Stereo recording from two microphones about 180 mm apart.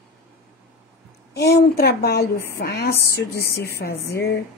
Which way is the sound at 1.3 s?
65° left (ahead or behind).